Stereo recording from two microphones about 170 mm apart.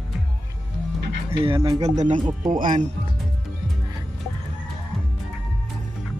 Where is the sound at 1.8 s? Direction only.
45° right (ahead or behind).